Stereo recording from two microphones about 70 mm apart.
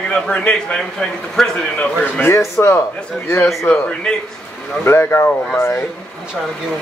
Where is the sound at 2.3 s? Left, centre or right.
Left.